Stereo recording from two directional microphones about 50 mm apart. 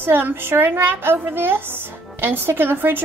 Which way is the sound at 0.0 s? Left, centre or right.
Right.